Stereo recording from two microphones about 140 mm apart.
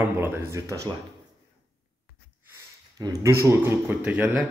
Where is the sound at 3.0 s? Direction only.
20° right (ahead or behind).